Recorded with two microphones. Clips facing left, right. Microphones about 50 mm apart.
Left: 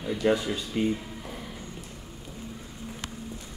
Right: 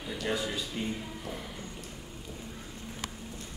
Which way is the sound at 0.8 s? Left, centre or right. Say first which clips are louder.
Left 10 dB; left.